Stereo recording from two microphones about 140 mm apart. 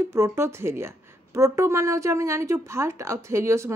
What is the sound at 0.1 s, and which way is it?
A woman's voice, 20° right (ahead or behind).